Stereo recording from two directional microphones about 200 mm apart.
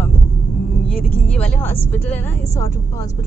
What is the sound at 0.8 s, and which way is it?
Speech, 5° left (ahead or behind).